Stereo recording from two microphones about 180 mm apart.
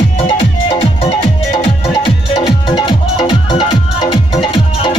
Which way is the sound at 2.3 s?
25° left (ahead or behind).